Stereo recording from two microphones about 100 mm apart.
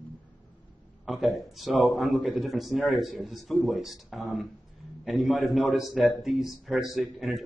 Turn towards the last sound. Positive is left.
turn(degrees=0)  # may be behind; listen again after turning